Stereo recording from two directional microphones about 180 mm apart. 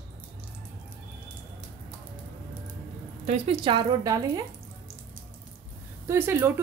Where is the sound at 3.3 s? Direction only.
30° right (ahead or behind).